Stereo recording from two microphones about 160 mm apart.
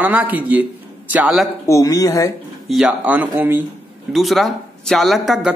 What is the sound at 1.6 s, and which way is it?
Speech, 20° left (ahead or behind).